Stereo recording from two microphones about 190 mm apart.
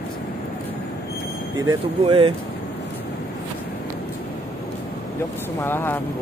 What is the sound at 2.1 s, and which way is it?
Speech, 30° right (ahead or behind).